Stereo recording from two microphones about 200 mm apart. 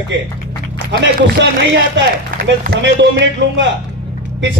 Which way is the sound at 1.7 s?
55° right (ahead or behind).